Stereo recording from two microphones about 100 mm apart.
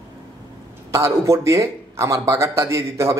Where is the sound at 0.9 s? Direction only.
30° right (ahead or behind).